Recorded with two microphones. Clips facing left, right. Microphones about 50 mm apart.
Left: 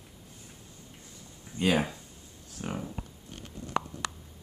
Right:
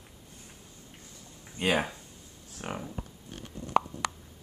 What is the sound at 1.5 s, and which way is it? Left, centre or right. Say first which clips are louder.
Speech: left 1 dB; centre.